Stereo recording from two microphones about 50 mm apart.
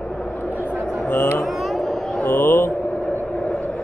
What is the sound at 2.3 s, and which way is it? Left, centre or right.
Speech, left.